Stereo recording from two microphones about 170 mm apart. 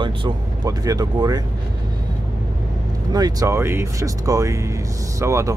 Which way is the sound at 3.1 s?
20° right (ahead or behind).